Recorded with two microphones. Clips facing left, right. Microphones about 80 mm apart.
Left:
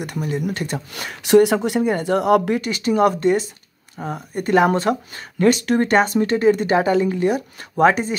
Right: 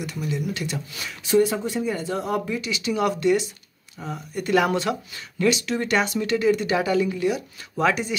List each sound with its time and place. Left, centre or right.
0.0 s speech: left